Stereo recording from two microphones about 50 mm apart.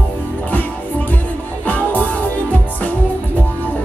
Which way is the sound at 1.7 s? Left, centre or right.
Left.